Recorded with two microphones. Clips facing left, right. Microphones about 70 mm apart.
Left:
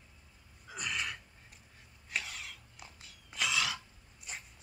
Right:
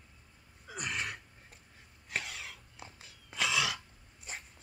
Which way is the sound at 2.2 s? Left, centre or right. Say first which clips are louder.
Right 1 dB; centre.